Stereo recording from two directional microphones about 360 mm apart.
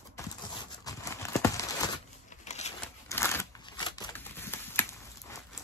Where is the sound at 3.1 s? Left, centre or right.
Centre.